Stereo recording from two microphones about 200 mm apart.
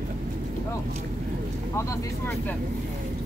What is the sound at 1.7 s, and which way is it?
Speech, 15° left (ahead or behind).